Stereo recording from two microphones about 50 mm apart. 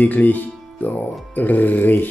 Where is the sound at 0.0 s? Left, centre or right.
Left.